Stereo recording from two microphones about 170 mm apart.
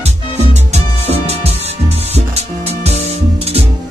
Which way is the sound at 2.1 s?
40° right (ahead or behind).